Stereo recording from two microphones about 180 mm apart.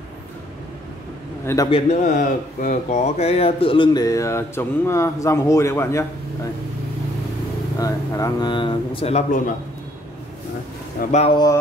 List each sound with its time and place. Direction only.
1.4 s a man's voice: 15° left (ahead or behind)
1.7 s speech: 40° left (ahead or behind); by 6.5 s 15° left (ahead or behind)
7.8 s speech: 20° left (ahead or behind); by 9.4 s 35° left (ahead or behind)
11.0 s speech: 40° left (ahead or behind)